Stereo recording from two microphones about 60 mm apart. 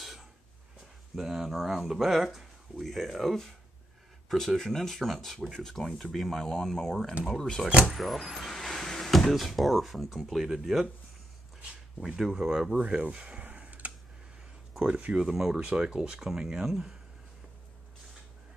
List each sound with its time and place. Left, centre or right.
0.0 s a sound: centre
1.1 s speech: centre
7.9 s speech: centre
12.2 s speech: centre
12.7 s a sound: right
14.8 s speech: centre
15.2 s speech: centre
15.6 s speech: centre